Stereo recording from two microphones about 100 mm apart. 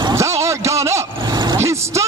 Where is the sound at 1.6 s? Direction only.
30° right (ahead or behind).